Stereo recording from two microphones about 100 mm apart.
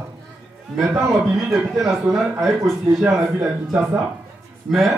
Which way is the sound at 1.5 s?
5° right (ahead or behind).